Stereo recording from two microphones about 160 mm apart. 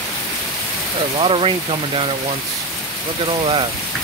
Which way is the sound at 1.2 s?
35° right (ahead or behind).